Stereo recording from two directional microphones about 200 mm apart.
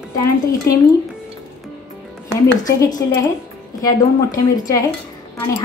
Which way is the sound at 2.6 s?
15° left (ahead or behind).